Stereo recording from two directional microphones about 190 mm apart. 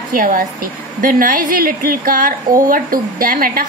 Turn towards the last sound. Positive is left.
turn(degrees=-50)  # may be behind; listen again after turning